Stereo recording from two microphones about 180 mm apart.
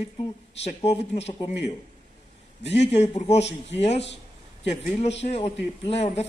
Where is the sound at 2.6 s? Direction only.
35° left (ahead or behind).